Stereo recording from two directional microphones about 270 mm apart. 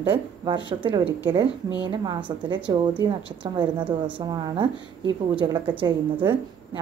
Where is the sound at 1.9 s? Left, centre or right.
Centre.